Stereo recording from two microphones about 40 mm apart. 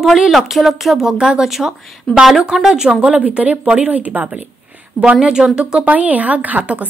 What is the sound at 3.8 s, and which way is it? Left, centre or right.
Speech, right.